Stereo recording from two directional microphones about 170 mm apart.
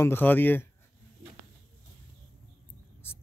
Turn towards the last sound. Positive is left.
turn(degrees=15)  # may be behind; listen again after turning